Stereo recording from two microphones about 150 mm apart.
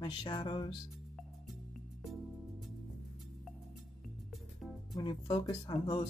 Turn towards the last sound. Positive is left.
turn(degrees=30)  # may be behind; listen again after turning